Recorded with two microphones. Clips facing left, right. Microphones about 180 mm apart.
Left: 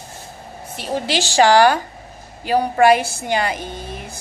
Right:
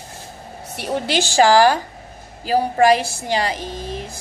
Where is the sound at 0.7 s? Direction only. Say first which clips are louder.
Right 1 dB; 55° right (ahead or behind).